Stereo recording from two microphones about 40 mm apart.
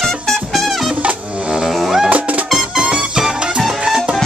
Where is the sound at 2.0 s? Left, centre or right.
Right.